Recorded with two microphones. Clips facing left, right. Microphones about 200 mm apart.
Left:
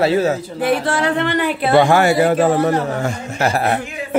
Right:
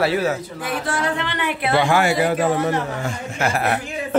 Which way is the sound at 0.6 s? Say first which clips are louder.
Left 8 dB; 65° left (ahead or behind).